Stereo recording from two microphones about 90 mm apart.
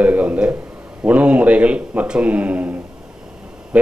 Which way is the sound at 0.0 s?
15° right (ahead or behind).